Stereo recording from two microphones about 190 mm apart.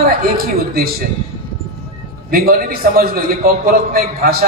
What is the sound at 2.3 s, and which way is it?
A man's voice, 50° right (ahead or behind).